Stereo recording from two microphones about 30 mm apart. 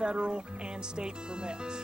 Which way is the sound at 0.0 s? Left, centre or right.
Right.